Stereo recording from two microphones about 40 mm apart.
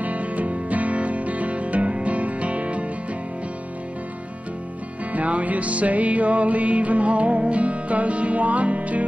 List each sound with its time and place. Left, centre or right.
0.0 s music: right
5.1 s music: right